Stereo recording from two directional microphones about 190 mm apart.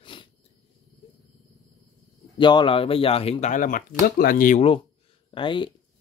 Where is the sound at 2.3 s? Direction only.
25° left (ahead or behind); by 4.6 s 45° left (ahead or behind).